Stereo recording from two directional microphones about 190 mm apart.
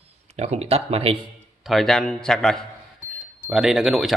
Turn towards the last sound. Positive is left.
turn(degrees=0)  # may be behind; listen again after turning